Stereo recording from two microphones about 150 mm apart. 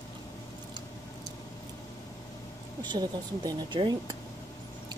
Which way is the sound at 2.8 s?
30° right (ahead or behind).